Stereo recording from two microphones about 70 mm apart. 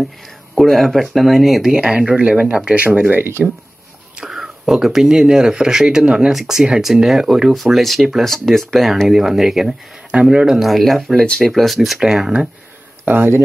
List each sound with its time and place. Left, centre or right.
0.6 s speech: centre; by 3.4 s right
4.3 s speech: centre
13.0 s speech: right